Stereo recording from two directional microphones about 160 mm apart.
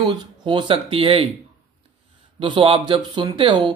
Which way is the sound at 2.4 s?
30° right (ahead or behind).